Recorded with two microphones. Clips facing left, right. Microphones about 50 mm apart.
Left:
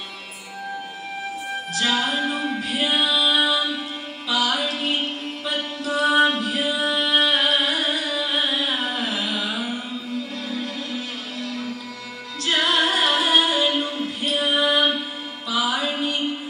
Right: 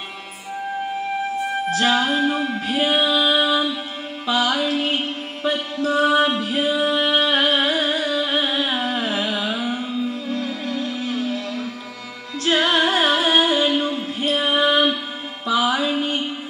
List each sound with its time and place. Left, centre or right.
2.0 s music: right
12.4 s music: right